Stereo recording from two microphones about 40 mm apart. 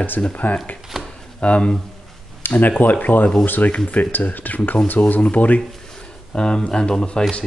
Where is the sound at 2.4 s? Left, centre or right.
Left.